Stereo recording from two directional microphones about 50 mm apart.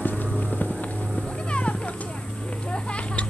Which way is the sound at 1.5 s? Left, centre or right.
Left.